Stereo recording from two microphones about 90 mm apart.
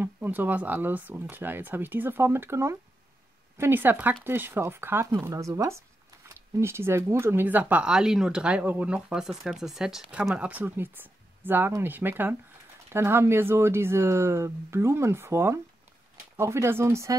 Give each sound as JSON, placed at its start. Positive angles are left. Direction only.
{"t": 0.0, "sound": "speech", "side_deg": -20}
{"t": 5.3, "sound": "speech", "side_deg": -40}
{"t": 10.3, "sound": "speech", "side_deg": -15}